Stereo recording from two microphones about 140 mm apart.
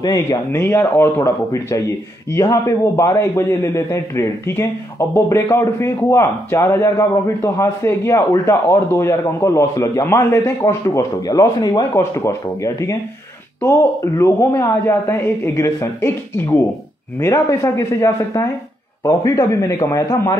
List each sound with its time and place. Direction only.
0.0 s a man's voice: 25° left (ahead or behind)